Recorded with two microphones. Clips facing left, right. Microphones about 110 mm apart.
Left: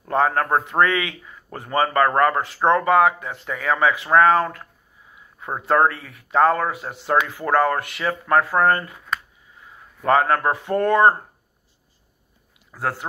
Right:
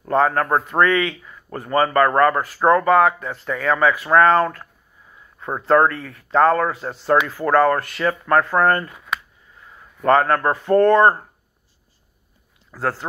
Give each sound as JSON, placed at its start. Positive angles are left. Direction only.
{"t": 0.1, "sound": "speech", "side_deg": 20}
{"t": 5.1, "sound": "a sound", "side_deg": 10}
{"t": 5.7, "sound": "speech", "side_deg": 20}
{"t": 10.0, "sound": "speech", "side_deg": 15}
{"t": 12.7, "sound": "speech", "side_deg": 15}